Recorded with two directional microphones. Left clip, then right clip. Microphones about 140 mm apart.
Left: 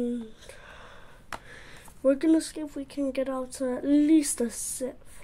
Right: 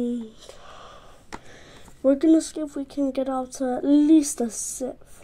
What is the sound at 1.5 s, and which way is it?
Speech, 5° left (ahead or behind).